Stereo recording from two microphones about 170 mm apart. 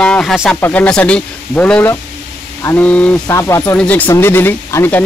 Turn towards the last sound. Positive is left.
turn(degrees=15)  # may be behind; listen again after turning